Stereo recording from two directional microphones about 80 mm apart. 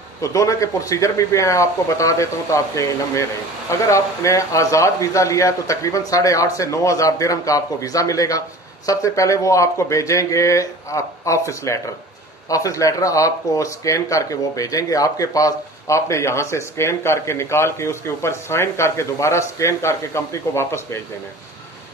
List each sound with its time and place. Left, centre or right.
0.2 s a man's voice: left